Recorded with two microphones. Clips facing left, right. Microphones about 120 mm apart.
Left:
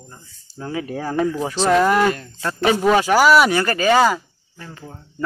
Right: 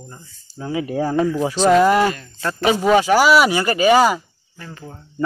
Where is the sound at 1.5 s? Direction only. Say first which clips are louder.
Right 3 dB; 5° right (ahead or behind).